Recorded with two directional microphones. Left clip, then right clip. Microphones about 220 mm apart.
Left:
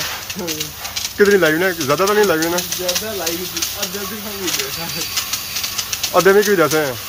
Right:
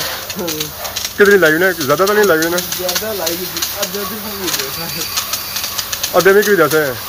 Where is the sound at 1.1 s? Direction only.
5° left (ahead or behind).